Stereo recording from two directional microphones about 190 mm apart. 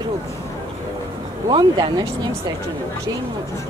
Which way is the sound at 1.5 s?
25° right (ahead or behind).